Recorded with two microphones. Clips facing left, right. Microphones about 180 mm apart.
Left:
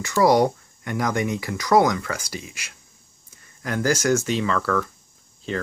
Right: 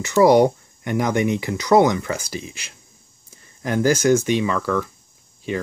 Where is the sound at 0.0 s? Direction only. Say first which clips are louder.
Right 4 dB; 20° right (ahead or behind).